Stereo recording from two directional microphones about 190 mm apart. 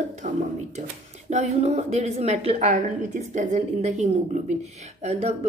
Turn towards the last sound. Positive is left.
turn(degrees=-35)  # may be behind; listen again after turning